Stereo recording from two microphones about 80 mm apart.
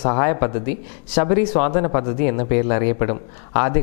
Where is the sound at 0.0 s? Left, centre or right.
Centre.